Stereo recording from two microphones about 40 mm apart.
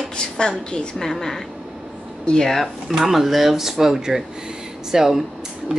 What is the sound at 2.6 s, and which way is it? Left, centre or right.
Speech, centre.